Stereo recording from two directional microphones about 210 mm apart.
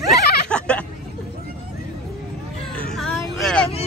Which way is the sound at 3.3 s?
Centre (ahead or behind).